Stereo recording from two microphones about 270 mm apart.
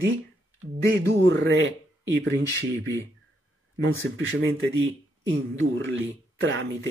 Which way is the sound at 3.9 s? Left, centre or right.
Right.